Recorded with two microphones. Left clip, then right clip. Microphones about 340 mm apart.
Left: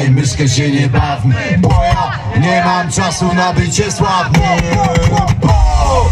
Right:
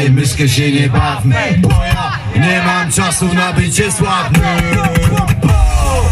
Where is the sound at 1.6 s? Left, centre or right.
Left.